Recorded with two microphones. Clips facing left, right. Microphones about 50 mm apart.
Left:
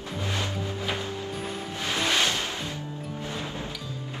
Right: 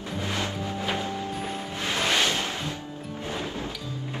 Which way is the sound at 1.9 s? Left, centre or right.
Right.